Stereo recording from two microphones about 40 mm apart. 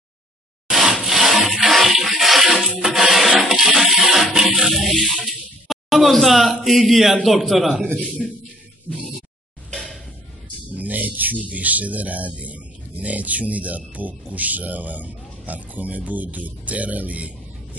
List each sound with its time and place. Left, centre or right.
0.7 s water: centre
2.8 s music: centre
6.8 s a man's voice: centre
8.2 s music: centre
9.7 s a sound: centre
10.8 s speech: right